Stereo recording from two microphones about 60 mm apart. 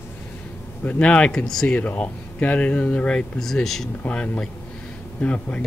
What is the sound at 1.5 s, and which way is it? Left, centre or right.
Speech, centre.